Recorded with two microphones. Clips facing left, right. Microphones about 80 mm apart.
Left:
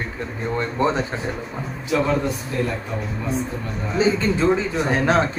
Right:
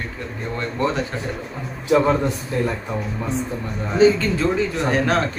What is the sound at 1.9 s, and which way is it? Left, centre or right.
Speech, right.